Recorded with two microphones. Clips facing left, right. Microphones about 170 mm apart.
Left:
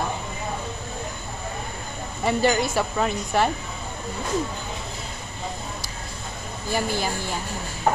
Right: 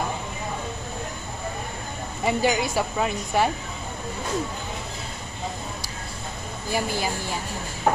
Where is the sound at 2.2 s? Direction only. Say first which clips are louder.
Left 1 dB; 10° right (ahead or behind).